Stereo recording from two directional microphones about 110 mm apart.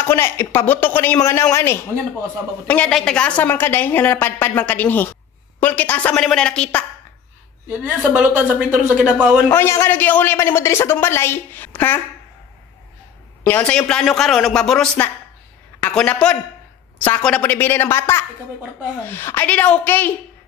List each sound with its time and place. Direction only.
0.0 s a man's voice: 20° left (ahead or behind)
2.6 s a woman's voice: 15° left (ahead or behind)
3.4 s a woman's voice: 20° left (ahead or behind)
7.6 s a woman's voice: 10° right (ahead or behind)
9.5 s a man's voice: 25° left (ahead or behind)
13.4 s a woman's voice: 15° left (ahead or behind)